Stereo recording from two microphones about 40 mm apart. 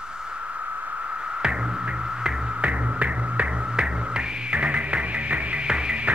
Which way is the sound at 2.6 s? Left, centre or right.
Right.